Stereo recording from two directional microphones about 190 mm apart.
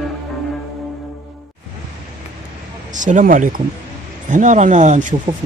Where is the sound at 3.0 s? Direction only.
40° right (ahead or behind).